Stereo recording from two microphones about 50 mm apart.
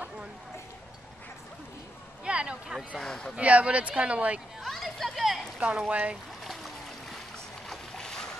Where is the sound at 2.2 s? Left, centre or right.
Centre.